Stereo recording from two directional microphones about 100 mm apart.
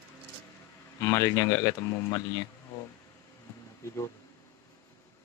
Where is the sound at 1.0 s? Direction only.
30° left (ahead or behind).